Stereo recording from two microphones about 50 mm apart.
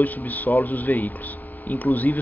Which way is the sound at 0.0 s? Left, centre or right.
Left.